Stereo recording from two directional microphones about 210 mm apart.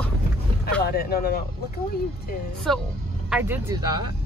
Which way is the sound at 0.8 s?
45° left (ahead or behind).